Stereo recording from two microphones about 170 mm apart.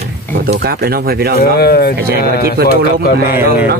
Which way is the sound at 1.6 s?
65° left (ahead or behind).